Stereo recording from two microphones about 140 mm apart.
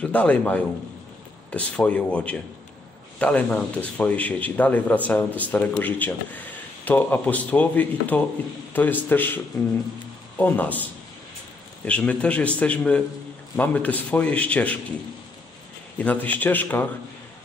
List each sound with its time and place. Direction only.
0.0 s speech: 10° left (ahead or behind)
16.0 s speech: 10° left (ahead or behind)